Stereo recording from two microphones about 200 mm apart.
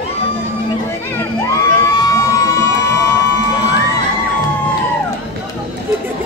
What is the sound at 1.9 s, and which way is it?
Crowd, 20° left (ahead or behind).